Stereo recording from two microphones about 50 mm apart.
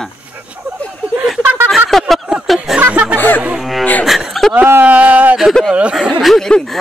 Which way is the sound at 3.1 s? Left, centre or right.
Left.